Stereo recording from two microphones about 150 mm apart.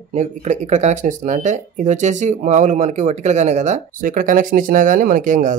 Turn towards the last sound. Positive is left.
turn(degrees=-60)  # may be behind; listen again after turning